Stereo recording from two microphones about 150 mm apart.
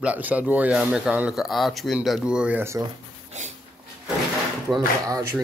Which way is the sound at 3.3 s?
50° right (ahead or behind).